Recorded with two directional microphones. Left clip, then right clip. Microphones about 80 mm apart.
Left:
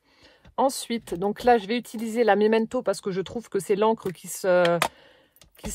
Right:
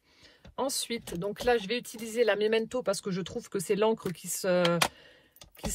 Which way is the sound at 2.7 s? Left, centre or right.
Left.